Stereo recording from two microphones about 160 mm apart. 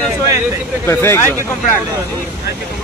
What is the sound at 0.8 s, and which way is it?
Speech, 15° left (ahead or behind).